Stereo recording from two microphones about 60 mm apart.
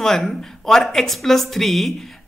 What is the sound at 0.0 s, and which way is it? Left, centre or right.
Speech, centre.